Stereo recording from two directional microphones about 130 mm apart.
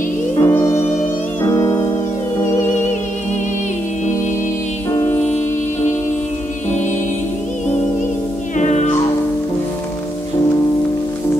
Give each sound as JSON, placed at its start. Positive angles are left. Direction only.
{"t": 0.4, "sound": "music", "side_deg": 20}
{"t": 8.5, "sound": "music", "side_deg": 65}